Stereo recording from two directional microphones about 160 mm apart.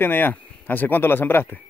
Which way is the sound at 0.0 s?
10° left (ahead or behind).